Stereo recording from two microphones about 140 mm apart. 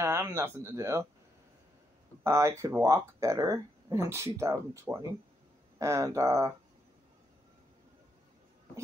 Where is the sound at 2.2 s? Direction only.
20° right (ahead or behind).